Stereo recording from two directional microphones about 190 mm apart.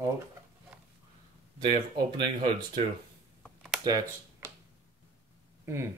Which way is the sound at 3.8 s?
20° right (ahead or behind).